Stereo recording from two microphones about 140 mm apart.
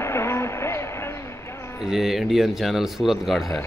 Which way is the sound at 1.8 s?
Centre (ahead or behind).